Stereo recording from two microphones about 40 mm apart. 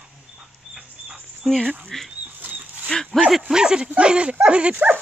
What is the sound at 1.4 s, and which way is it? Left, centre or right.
Speech, centre.